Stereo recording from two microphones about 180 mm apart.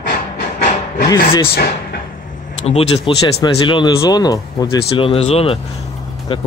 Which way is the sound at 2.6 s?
35° left (ahead or behind).